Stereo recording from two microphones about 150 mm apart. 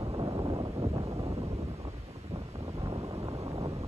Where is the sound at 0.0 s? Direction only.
30° right (ahead or behind).